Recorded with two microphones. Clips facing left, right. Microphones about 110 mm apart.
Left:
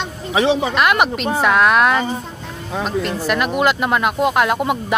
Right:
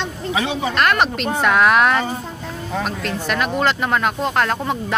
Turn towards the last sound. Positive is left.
turn(degrees=10)  # may be behind; listen again after turning